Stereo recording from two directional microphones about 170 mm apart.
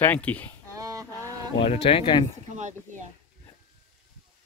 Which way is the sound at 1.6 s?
35° left (ahead or behind).